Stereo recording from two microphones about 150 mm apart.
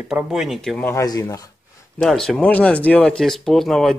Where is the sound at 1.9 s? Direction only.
5° left (ahead or behind).